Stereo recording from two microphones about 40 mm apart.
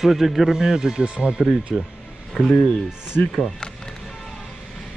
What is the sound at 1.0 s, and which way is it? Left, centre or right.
Speech, right.